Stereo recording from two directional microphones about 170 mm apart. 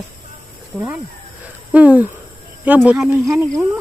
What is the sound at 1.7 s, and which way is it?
Speech, 10° right (ahead or behind).